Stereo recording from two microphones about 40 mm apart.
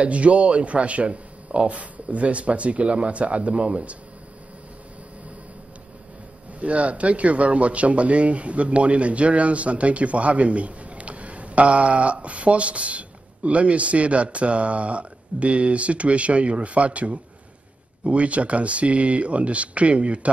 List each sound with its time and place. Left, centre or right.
0.0 s a man's voice: right
6.6 s a man's voice: right